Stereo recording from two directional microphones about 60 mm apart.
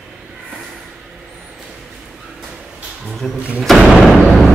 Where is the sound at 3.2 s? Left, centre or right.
Centre.